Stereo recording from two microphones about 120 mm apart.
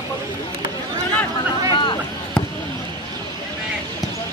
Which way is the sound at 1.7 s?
40° left (ahead or behind).